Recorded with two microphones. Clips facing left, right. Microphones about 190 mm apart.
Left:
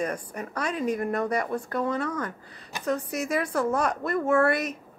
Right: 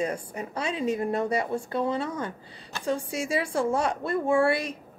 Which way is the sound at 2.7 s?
15° left (ahead or behind).